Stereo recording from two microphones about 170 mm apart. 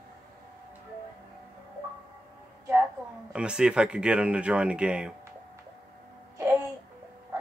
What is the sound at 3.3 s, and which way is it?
Speech, 5° right (ahead or behind).